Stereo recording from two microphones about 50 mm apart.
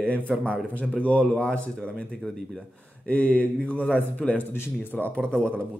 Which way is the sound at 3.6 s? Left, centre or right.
Left.